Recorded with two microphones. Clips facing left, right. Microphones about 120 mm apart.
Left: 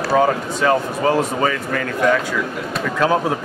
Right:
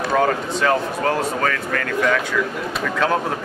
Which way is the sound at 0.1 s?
5° left (ahead or behind).